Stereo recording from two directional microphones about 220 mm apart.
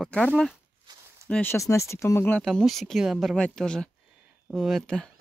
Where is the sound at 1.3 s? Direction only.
10° left (ahead or behind).